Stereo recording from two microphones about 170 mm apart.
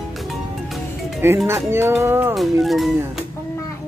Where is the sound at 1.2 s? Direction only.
15° right (ahead or behind).